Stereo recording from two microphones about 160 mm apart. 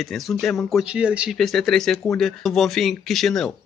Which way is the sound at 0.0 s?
Centre (ahead or behind).